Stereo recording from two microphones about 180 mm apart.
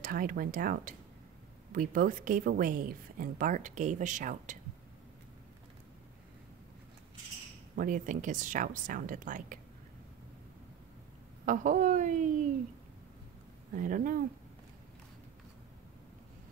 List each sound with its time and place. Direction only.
0.0 s a woman's voice: 50° right (ahead or behind)
7.7 s a woman's voice: 50° right (ahead or behind)
11.4 s a woman's voice: 45° right (ahead or behind)
13.7 s a woman's voice: 45° right (ahead or behind)